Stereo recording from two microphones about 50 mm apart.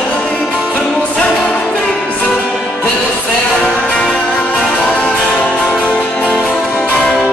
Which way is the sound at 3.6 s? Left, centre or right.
Left.